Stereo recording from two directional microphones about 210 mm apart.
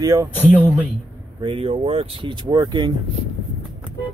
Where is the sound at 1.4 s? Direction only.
25° right (ahead or behind).